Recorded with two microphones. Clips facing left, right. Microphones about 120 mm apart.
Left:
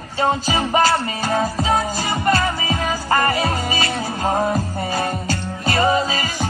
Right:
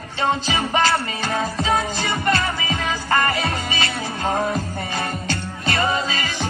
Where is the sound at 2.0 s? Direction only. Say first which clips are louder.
Left 3 dB; 40° left (ahead or behind).